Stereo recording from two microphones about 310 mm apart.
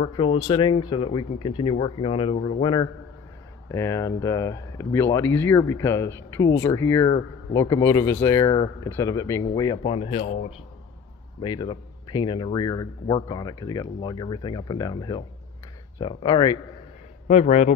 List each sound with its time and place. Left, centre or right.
0.0 s speech: centre